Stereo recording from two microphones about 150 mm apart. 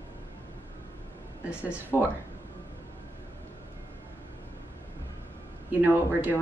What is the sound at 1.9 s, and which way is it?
Speech, 15° left (ahead or behind).